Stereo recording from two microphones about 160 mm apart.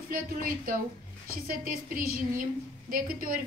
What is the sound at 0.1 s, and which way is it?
A woman's voice, 65° right (ahead or behind).